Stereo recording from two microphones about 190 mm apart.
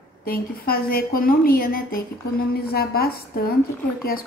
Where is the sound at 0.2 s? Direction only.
50° left (ahead or behind).